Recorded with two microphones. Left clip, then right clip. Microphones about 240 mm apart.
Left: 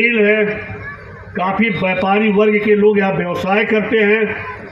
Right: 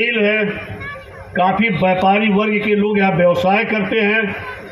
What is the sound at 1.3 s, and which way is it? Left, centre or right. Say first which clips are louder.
A man's voice: right 2 dB; right.